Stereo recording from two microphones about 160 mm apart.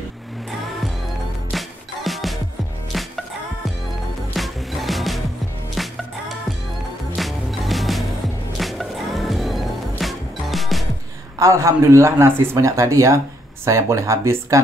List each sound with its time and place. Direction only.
1.5 s music: centre (ahead or behind)
4.4 s music: centre (ahead or behind)
7.2 s music: centre (ahead or behind)
11.3 s speech: 20° right (ahead or behind)